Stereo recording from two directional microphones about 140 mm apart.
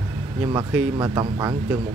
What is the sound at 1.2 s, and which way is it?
Speech, 30° right (ahead or behind).